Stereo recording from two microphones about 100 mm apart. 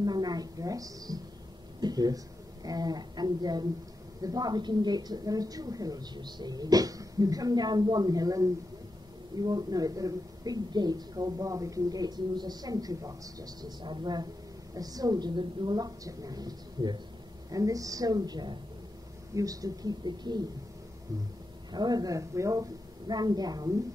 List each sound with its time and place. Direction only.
0.0 s a sound: 45° right (ahead or behind)
1.8 s a woman's voice: 40° right (ahead or behind)
21.7 s a woman's voice: 45° right (ahead or behind)